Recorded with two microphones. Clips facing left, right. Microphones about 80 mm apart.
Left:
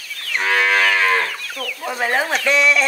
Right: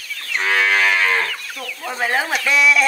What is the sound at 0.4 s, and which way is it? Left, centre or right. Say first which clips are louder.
Moo: even; left.